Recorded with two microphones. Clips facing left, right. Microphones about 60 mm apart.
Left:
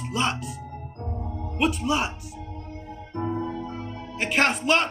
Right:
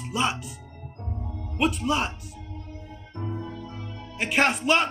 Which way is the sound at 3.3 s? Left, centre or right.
Left.